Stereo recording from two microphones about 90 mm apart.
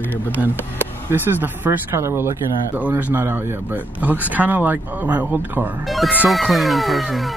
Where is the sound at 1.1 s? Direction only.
20° right (ahead or behind).